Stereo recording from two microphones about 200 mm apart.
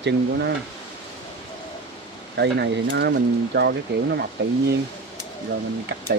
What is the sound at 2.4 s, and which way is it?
Speech, 60° right (ahead or behind).